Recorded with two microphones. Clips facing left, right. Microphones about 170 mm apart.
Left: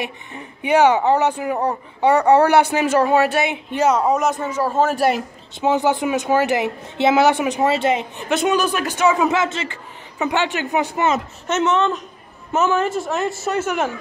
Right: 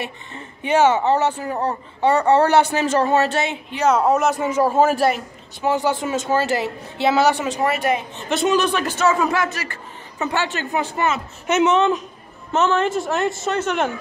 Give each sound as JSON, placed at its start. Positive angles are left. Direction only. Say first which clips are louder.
{"t": 0.0, "sound": "speech", "louder": "left 2 dB", "side_deg": 15}
{"t": 3.9, "sound": "a woman's voice", "louder": "right 1 dB", "side_deg": -5}
{"t": 4.5, "sound": "speech", "louder": "right 5 dB", "side_deg": -15}
{"t": 5.6, "sound": "a woman's voice", "louder": "left 2 dB", "side_deg": 20}
{"t": 8.5, "sound": "speech", "louder": "even", "side_deg": 5}
{"t": 11.4, "sound": "speech", "louder": "right 3 dB", "side_deg": -15}
{"t": 12.5, "sound": "a woman's voice", "louder": "even", "side_deg": 5}